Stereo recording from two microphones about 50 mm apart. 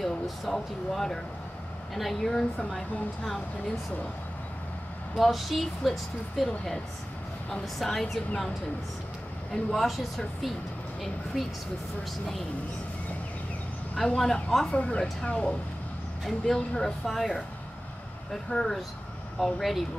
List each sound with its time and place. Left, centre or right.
0.0 s speech: centre
5.1 s speech: centre
7.6 s speech: centre
9.5 s speech: centre
13.9 s speech: centre
14.7 s speech: centre
16.3 s speech: centre
18.3 s speech: centre